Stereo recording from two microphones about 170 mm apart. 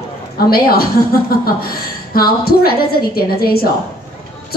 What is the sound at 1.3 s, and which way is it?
A woman's voice, 65° left (ahead or behind).